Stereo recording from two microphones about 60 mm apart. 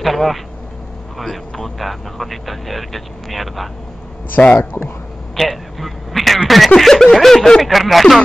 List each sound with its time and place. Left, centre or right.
0.0 s speech: centre
4.6 s speech: left
5.3 s a sound: centre
6.7 s speech: centre